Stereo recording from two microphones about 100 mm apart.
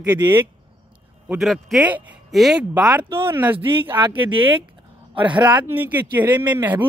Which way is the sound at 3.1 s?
25° right (ahead or behind).